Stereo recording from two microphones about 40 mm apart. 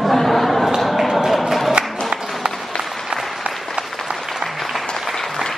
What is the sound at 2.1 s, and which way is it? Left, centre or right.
Applause, right.